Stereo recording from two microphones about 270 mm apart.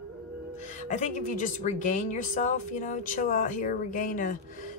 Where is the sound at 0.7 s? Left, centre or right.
Left.